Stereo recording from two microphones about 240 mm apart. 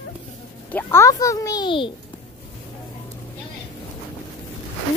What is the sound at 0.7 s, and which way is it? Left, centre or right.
A child's voice, centre.